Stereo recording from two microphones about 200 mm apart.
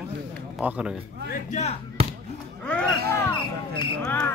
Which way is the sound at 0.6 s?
5° right (ahead or behind).